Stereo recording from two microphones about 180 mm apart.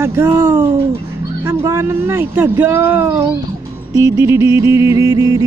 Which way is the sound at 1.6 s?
15° right (ahead or behind).